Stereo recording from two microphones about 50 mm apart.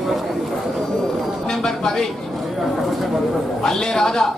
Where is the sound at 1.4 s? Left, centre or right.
Centre.